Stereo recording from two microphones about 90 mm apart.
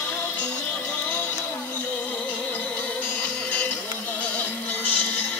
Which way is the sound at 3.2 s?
15° left (ahead or behind).